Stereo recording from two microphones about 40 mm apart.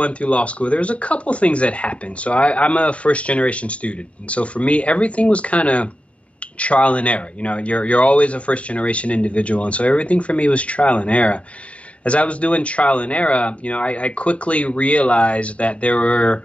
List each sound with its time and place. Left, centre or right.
0.0 s speech: left